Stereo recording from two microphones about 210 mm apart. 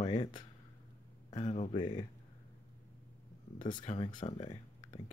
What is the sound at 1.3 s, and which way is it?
Speech, 30° left (ahead or behind).